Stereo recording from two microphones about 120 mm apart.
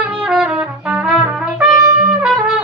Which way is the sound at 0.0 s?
5° right (ahead or behind).